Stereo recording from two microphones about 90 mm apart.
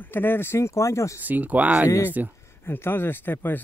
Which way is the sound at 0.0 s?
25° left (ahead or behind).